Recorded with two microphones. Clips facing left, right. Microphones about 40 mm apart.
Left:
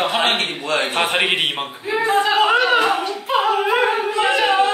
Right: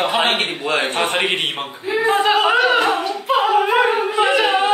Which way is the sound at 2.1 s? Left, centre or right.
Centre.